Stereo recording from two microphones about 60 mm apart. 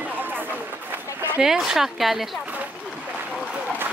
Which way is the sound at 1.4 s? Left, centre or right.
Centre.